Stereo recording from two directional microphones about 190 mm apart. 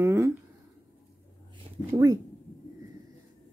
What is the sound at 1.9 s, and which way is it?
Speech, 20° right (ahead or behind).